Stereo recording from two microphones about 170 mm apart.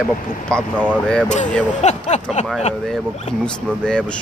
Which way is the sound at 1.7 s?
40° left (ahead or behind).